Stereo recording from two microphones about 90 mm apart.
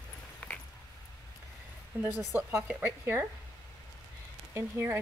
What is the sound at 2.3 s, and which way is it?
Speech, 25° right (ahead or behind).